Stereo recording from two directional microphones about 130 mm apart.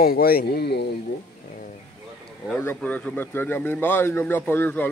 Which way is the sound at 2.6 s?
10° left (ahead or behind).